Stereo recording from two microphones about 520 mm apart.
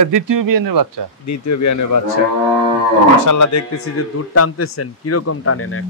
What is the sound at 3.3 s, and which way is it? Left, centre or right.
Speech, left.